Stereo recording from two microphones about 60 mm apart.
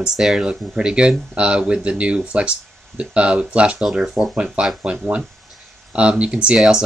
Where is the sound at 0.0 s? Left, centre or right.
Centre.